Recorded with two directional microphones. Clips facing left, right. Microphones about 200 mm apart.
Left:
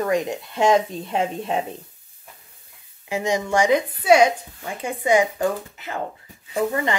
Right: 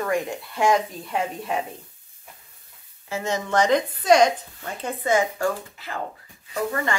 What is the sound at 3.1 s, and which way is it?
Speech, 15° left (ahead or behind).